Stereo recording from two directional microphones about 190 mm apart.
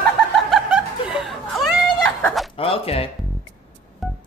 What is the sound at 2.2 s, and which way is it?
Chicken, 10° left (ahead or behind).